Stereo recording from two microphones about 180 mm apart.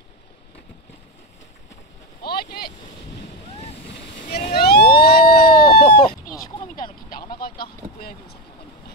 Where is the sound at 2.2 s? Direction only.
55° left (ahead or behind).